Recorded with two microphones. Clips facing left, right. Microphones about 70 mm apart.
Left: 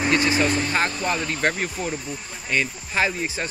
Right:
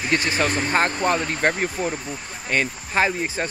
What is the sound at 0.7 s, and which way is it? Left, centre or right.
Speech, right.